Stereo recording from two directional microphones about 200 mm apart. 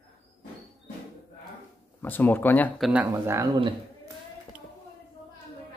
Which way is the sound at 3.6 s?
25° right (ahead or behind).